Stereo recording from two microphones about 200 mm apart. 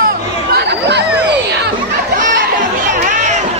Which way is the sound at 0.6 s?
55° right (ahead or behind).